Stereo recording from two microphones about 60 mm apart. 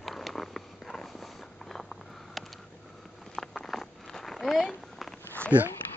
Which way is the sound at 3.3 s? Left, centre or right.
Centre.